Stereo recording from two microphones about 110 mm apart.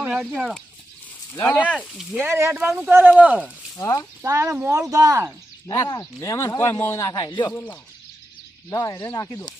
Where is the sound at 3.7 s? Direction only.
35° left (ahead or behind).